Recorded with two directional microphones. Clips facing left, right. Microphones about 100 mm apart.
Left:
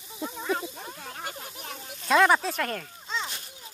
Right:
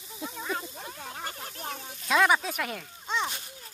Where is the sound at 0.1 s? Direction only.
5° left (ahead or behind).